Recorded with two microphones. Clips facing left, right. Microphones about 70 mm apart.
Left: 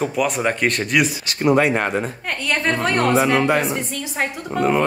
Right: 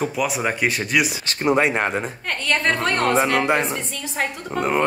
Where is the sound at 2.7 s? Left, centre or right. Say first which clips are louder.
Left 2 dB; centre.